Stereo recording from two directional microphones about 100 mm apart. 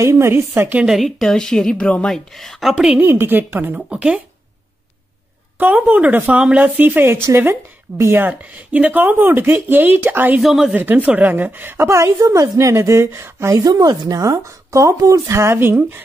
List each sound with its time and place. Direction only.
0.0 s speech: 30° right (ahead or behind)
0.7 s a woman's voice: 5° right (ahead or behind)
3.0 s speech: 20° right (ahead or behind)
3.7 s speech: 10° right (ahead or behind)
5.6 s speech: 15° right (ahead or behind)
10.4 s a woman's voice: centre (ahead or behind)
10.7 s speech: 20° right (ahead or behind)
13.6 s speech: 45° right (ahead or behind); by 16.0 s 20° right (ahead or behind)